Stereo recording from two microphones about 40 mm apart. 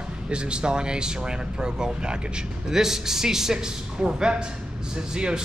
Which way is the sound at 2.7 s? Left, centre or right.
Centre.